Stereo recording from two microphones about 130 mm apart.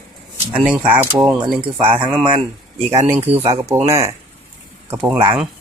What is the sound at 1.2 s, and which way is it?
Speech, 20° right (ahead or behind).